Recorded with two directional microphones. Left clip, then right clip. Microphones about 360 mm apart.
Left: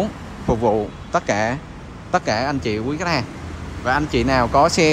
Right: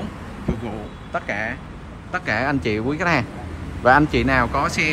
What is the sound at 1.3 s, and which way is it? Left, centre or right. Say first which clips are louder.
Speech: left 5 dB; centre.